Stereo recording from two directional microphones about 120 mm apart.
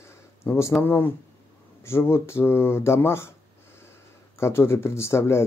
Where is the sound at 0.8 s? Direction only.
15° left (ahead or behind).